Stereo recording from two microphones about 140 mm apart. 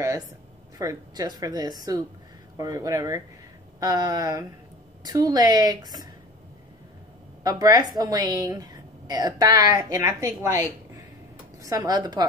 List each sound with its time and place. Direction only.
0.7 s a woman's voice: 25° right (ahead or behind)
7.4 s a woman's voice: 25° right (ahead or behind)
11.6 s a woman's voice: 25° right (ahead or behind)